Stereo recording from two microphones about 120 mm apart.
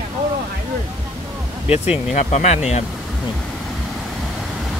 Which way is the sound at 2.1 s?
80° left.